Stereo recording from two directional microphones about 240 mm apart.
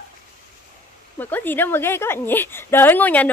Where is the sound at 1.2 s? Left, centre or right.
Centre.